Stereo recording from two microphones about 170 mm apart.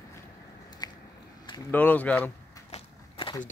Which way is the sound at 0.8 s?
25° left (ahead or behind).